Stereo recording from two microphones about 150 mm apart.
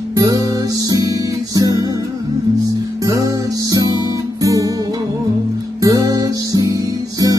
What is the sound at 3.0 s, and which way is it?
Music, 25° right (ahead or behind).